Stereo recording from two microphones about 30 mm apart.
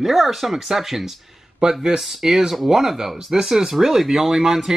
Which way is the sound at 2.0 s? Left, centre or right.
Centre.